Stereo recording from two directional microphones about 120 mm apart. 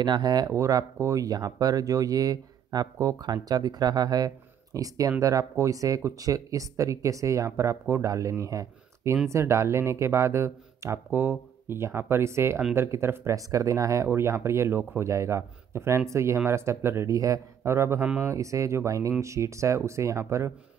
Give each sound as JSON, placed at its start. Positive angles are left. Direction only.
{"t": 0.0, "sound": "speech", "side_deg": -35}